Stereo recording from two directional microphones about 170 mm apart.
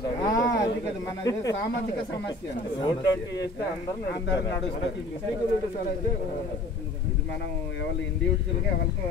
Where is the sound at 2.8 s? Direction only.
25° left (ahead or behind).